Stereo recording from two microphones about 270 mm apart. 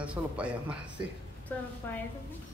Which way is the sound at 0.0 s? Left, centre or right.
Centre.